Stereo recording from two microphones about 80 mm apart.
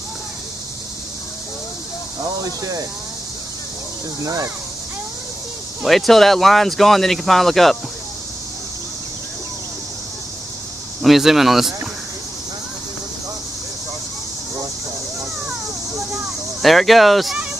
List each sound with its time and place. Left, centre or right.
2.2 s speech: right
4.2 s speech: right
5.9 s speech: centre
11.0 s speech: centre
16.6 s speech: centre